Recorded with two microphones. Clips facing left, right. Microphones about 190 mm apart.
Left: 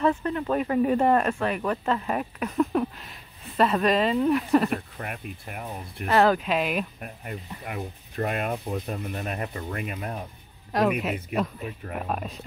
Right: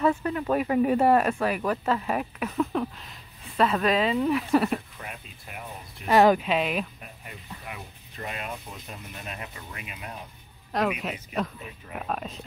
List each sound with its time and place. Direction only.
0.0 s speech: 10° right (ahead or behind)
4.9 s speech: 55° left (ahead or behind)
6.0 s speech: 10° right (ahead or behind)
6.5 s speech: centre (ahead or behind)
7.0 s speech: 50° left (ahead or behind)
10.7 s speech: centre (ahead or behind)